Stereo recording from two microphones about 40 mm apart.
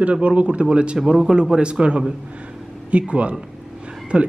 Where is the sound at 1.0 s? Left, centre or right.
Centre.